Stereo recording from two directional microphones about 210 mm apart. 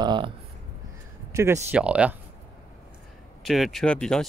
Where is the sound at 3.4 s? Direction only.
Centre (ahead or behind).